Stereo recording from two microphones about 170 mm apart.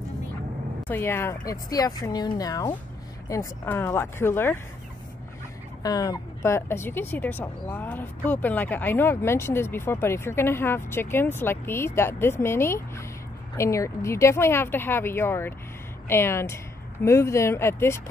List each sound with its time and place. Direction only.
0.8 s speech: 15° left (ahead or behind)
5.8 s speech: 20° left (ahead or behind)